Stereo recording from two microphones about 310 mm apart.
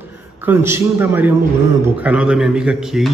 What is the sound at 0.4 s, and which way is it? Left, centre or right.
A man's voice, centre.